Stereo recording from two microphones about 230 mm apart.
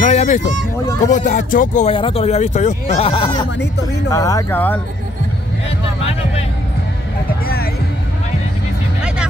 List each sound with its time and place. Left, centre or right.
0.0 s speech: left; by 4.7 s centre